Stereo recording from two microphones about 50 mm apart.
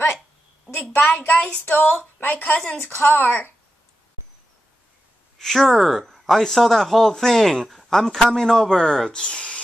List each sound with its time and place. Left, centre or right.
0.9 s a woman's voice: left
5.4 s speech: centre